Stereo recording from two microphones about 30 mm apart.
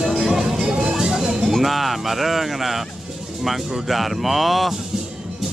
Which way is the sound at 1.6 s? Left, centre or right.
Centre.